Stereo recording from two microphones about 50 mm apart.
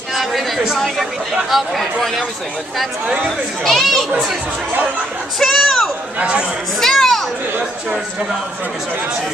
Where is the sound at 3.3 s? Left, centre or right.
Centre.